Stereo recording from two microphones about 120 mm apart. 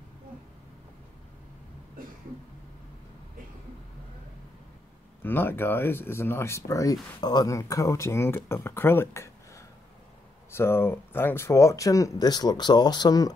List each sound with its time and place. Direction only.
5.2 s speech: 15° left (ahead or behind); by 13.3 s 35° left (ahead or behind)